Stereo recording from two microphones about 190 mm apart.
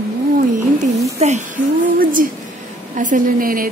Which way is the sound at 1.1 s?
40° right (ahead or behind).